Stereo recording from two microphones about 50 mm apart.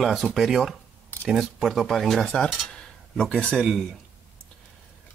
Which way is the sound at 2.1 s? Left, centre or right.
Centre.